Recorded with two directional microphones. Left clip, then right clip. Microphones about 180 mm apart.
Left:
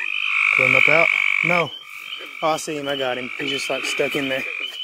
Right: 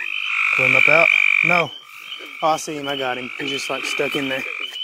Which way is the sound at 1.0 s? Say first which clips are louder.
Right 3 dB; 20° right (ahead or behind).